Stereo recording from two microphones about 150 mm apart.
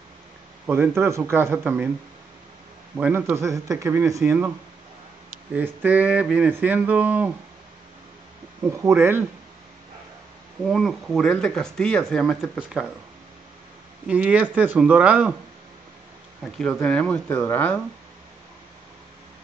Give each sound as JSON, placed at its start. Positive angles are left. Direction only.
{"t": 0.7, "sound": "speech", "side_deg": -15}
{"t": 3.0, "sound": "speech", "side_deg": -15}
{"t": 5.5, "sound": "speech", "side_deg": -10}
{"t": 8.6, "sound": "speech", "side_deg": -20}
{"t": 10.7, "sound": "speech", "side_deg": 0}
{"t": 14.0, "sound": "speech", "side_deg": -10}
{"t": 16.5, "sound": "speech", "side_deg": 5}